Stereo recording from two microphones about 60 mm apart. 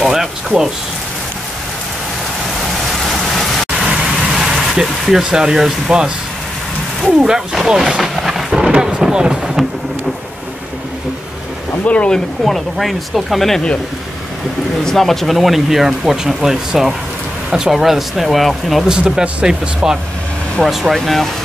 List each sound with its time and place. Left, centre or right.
0.0 s a sound: centre
3.8 s vehicle: centre
7.2 s speech: centre
8.0 s wild animals: centre
8.5 s thunder: centre
8.9 s speech: centre
11.8 s speech: left
12.4 s speech: centre
14.9 s speech: centre
18.9 s speech: centre